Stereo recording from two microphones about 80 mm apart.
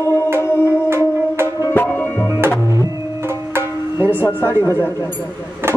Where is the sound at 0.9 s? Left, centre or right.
Right.